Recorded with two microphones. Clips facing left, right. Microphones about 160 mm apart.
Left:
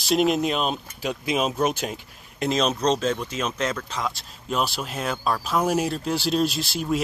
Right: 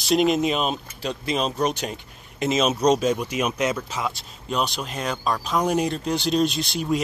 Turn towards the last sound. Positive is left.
turn(degrees=0)  # may be behind; listen again after turning